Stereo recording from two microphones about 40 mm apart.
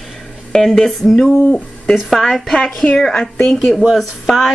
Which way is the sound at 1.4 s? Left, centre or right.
Left.